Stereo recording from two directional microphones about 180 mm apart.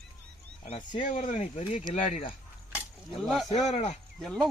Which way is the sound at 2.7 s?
5° right (ahead or behind).